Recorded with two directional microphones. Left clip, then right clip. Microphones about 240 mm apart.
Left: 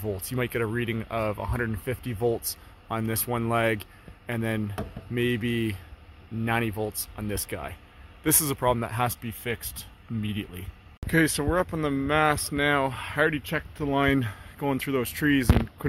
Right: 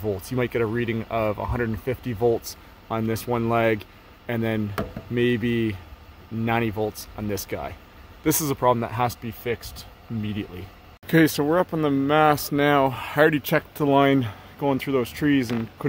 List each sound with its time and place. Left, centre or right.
0.0 s speech: centre
11.1 s speech: centre
13.9 s speech: centre